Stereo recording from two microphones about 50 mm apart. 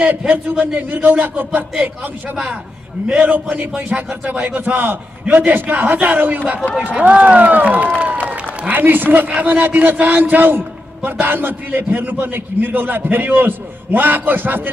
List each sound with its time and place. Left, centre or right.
0.3 s a man's voice: right
3.2 s a man's voice: right
8.0 s applause: right
9.5 s a man's voice: right